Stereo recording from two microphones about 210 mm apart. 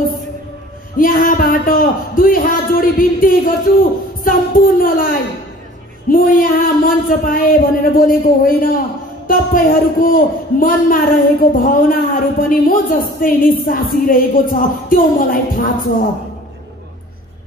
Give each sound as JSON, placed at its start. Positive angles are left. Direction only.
{"t": 0.9, "sound": "a man's voice", "side_deg": 40}
{"t": 6.0, "sound": "a sound", "side_deg": 40}
{"t": 9.3, "sound": "a man's voice", "side_deg": 40}